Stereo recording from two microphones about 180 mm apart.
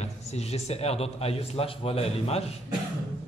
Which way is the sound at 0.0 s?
35° left (ahead or behind).